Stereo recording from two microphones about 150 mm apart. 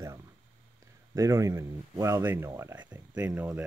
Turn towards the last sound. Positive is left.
turn(degrees=-10)  # may be behind; listen again after turning